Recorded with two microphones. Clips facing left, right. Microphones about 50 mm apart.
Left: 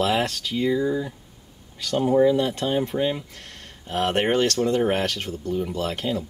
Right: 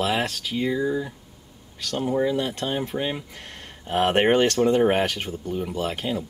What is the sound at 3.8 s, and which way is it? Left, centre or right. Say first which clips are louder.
Speech: right 3 dB; right.